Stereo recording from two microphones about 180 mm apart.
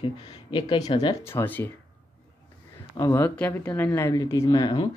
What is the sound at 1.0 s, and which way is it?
Speech, 15° left (ahead or behind).